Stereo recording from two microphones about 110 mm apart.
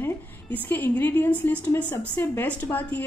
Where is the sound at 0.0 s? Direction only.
15° left (ahead or behind).